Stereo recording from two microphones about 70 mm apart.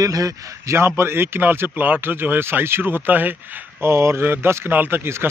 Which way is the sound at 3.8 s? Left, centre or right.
Right.